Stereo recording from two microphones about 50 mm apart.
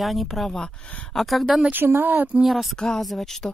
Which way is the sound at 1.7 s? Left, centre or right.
Right.